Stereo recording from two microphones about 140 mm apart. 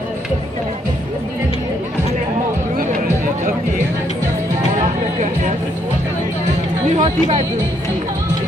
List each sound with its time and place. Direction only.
7.0 s chatter: 55° right (ahead or behind)